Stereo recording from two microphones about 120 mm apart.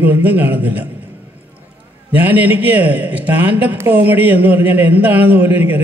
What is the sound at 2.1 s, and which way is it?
A man's voice, 15° right (ahead or behind).